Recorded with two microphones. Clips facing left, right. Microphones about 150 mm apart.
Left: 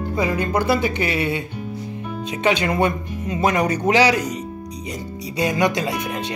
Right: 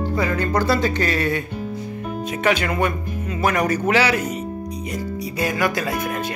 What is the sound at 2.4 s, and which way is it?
Speech, 20° left (ahead or behind).